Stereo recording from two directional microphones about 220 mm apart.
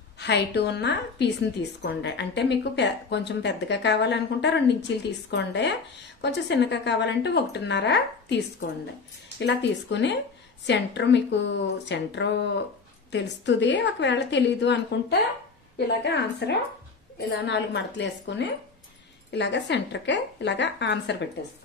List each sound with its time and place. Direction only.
0.2 s a woman's voice: 50° left (ahead or behind)